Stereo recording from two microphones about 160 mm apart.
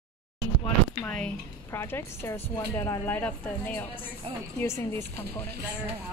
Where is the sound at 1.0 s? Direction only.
10° left (ahead or behind).